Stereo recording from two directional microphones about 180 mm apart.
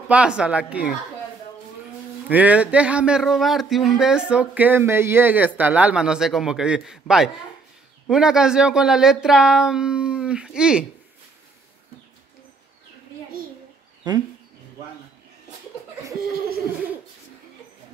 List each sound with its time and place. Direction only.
0.1 s speech: 5° right (ahead or behind)
2.2 s speech: 10° right (ahead or behind)
14.0 s speech: 25° right (ahead or behind)